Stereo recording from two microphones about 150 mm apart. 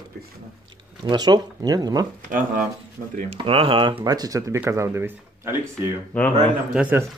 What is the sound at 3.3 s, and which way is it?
Speech, 35° right (ahead or behind).